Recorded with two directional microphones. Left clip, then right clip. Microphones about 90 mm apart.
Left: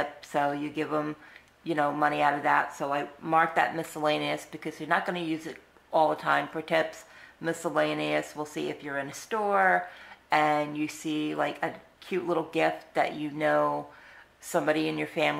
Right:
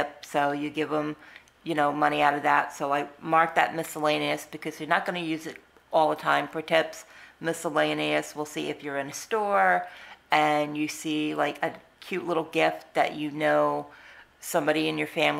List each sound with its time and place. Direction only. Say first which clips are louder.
0.0 s speech: right 2 dB; 30° right (ahead or behind)